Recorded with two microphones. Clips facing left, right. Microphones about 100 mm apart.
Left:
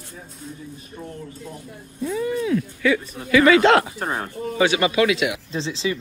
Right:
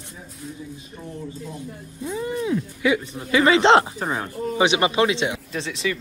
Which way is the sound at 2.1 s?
25° right (ahead or behind).